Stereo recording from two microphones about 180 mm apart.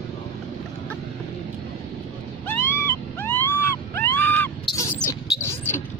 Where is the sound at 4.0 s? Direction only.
10° left (ahead or behind).